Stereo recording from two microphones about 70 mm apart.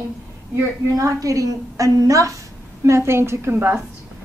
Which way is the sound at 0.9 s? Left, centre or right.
Right.